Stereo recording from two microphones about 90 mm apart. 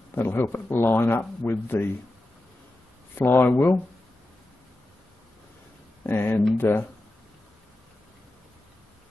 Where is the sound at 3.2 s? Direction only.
25° left (ahead or behind).